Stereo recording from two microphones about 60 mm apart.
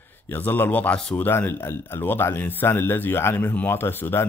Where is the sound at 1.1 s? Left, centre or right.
Left.